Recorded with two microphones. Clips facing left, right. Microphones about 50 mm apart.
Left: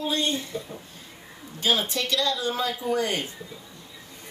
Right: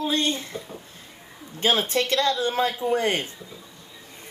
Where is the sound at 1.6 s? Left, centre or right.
Right.